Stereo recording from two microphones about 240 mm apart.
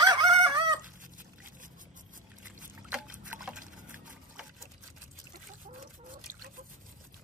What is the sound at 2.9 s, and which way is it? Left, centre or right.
Liquid, centre.